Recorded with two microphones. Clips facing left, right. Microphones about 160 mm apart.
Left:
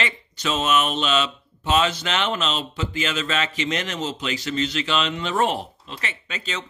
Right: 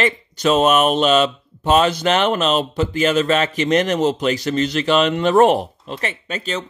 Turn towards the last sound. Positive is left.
turn(degrees=-45)  # may be behind; listen again after turning